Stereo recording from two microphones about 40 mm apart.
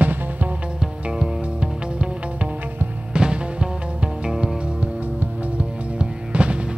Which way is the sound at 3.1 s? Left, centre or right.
Right.